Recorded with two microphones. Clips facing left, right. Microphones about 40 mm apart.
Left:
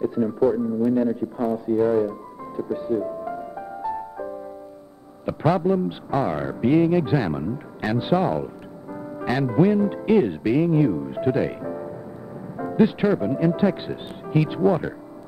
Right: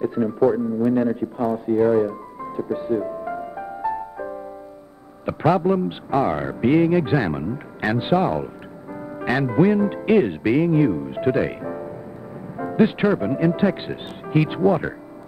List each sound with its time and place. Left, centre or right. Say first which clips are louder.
0.0 s a man's voice: right 2 dB; right
1.5 s music: right 2 dB; right
5.2 s a man's voice: right 2 dB; right